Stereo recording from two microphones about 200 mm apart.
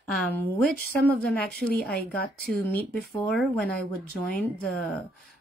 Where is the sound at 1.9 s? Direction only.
50° left (ahead or behind).